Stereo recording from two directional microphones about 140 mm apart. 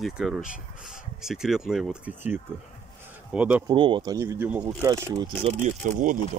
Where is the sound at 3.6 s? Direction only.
35° right (ahead or behind).